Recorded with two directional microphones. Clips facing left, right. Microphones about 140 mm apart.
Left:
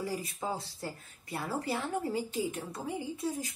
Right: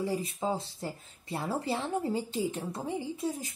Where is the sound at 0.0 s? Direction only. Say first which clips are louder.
Right 4 dB; 20° right (ahead or behind).